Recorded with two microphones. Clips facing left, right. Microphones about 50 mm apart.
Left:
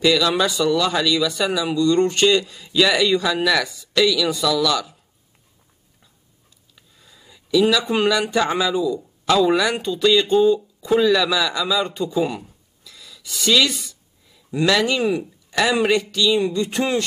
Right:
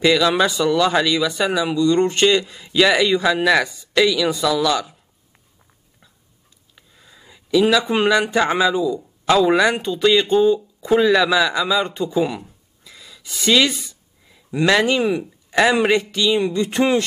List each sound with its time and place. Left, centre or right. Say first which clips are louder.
0.0 s speech: right 2 dB; right
6.7 s speech: right 3 dB; right
12.4 s a sound: right 1 dB; right
14.3 s speech: right 2 dB; right